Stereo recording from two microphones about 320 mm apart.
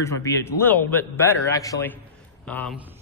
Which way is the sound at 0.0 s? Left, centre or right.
Centre.